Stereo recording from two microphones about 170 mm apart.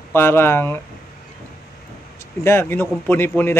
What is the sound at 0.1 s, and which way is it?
Speech, 15° left (ahead or behind).